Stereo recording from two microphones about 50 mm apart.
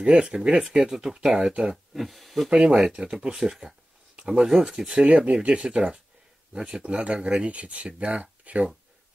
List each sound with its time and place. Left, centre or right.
0.0 s speech: centre
2.0 s speech: centre
2.5 s speech: centre